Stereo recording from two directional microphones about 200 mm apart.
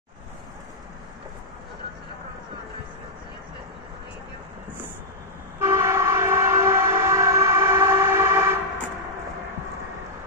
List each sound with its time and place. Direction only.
5.6 s train: 15° right (ahead or behind)